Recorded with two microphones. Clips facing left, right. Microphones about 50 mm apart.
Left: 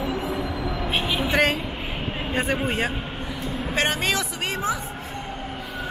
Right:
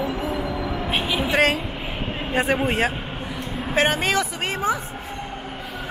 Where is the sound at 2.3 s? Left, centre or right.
Right.